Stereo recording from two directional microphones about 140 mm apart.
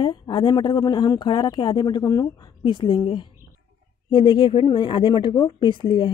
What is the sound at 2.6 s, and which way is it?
Speech, 40° left (ahead or behind).